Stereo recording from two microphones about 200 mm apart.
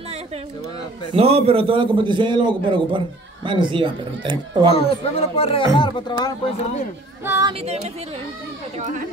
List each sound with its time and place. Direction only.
1.1 s a man's voice: 30° right (ahead or behind)
4.7 s speech: 30° left (ahead or behind)
7.2 s speech: 15° right (ahead or behind)
8.7 s speech: 35° right (ahead or behind)